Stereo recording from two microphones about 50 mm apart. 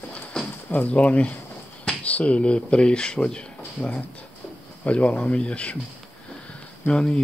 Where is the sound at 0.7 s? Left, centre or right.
Left.